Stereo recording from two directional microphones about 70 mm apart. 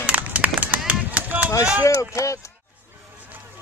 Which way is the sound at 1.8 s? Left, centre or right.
Left.